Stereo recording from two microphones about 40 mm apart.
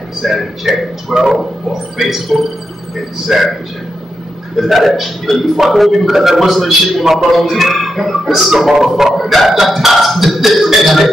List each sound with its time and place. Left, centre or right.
0.2 s a man's voice: centre
4.6 s a man's voice: centre
9.6 s a sound: centre